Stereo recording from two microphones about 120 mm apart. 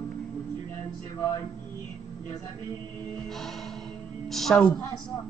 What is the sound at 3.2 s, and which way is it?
A man's voice, centre (ahead or behind).